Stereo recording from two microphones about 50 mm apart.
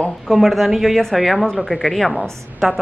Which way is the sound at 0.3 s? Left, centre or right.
Centre.